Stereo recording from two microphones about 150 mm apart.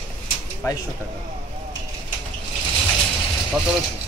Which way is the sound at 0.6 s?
20° left (ahead or behind).